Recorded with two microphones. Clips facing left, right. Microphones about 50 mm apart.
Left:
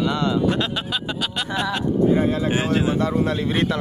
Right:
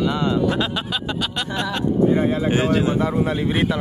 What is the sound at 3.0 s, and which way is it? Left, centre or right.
Speech, centre.